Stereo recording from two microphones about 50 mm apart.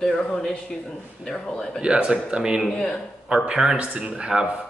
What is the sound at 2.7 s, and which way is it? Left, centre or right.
Speech, centre.